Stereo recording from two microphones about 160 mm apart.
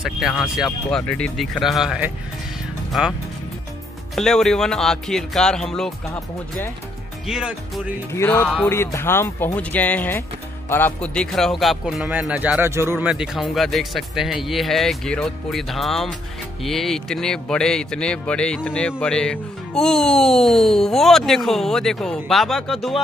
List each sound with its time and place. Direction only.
0.0 s speech: centre (ahead or behind)
7.2 s speech: 5° right (ahead or behind)
8.1 s speech: 15° left (ahead or behind)